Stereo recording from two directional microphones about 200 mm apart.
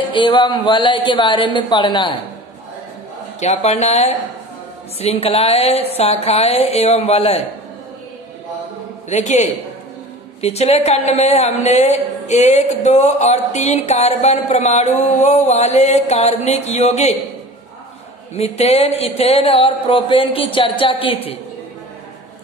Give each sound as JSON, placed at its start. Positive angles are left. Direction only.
{"t": 0.1, "sound": "speech", "side_deg": 25}
{"t": 3.3, "sound": "a woman's voice", "side_deg": 35}
{"t": 9.1, "sound": "a woman's voice", "side_deg": 35}
{"t": 18.3, "sound": "speech", "side_deg": 30}